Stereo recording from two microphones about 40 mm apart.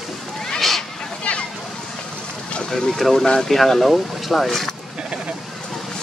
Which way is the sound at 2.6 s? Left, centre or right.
Centre.